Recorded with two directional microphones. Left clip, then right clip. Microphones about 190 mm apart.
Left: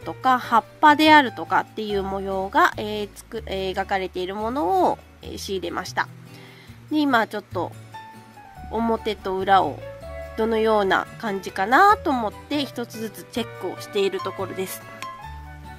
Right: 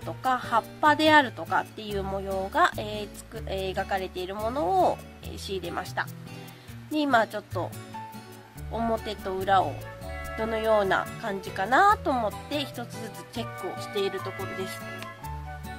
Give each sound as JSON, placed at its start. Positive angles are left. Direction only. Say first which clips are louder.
{"t": 0.0, "sound": "speech", "louder": "left 7 dB", "side_deg": 25}
{"t": 8.7, "sound": "speech", "louder": "left 5 dB", "side_deg": 25}